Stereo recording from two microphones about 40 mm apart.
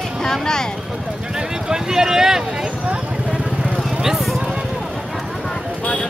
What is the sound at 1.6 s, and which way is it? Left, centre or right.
Vehicle, centre.